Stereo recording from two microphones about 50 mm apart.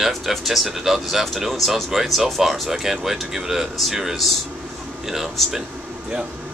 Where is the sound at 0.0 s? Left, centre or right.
Centre.